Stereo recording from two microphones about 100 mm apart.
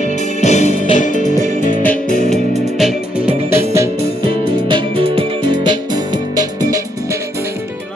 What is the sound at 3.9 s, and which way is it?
Music, 70° right (ahead or behind).